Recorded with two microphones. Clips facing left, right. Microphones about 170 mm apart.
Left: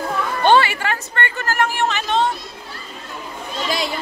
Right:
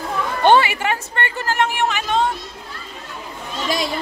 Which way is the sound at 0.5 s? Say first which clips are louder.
Right 1 dB; 20° right (ahead or behind).